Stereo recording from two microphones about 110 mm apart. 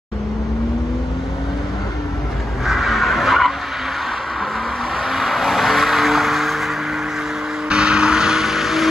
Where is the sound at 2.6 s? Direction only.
Centre (ahead or behind).